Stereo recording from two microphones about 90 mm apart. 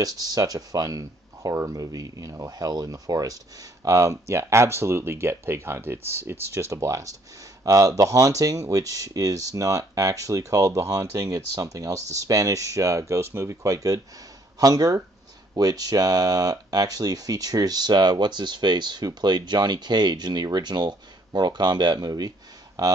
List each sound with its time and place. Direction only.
0.0 s speech: 45° right (ahead or behind)